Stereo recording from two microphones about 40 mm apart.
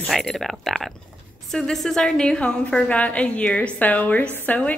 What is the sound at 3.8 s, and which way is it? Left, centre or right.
Speech, left.